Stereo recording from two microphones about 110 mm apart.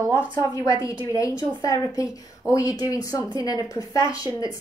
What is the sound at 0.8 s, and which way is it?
A woman's voice, 30° left (ahead or behind).